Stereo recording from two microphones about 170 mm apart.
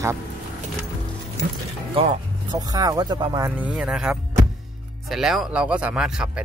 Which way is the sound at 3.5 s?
10° right (ahead or behind).